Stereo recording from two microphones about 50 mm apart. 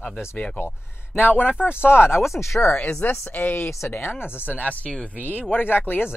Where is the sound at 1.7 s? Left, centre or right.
Left.